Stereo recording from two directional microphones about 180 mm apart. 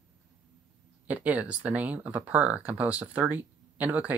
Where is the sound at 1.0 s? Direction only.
10° right (ahead or behind).